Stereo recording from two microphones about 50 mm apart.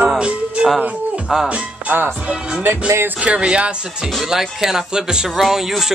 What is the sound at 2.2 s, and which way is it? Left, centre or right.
Speech, right.